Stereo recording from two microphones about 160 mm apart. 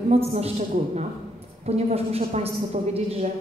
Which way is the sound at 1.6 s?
40° right (ahead or behind).